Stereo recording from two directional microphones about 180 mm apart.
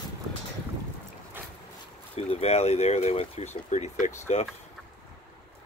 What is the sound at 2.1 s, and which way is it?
Speech, 35° left (ahead or behind).